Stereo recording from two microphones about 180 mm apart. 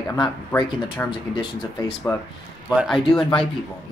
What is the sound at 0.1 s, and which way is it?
Speech, 20° left (ahead or behind).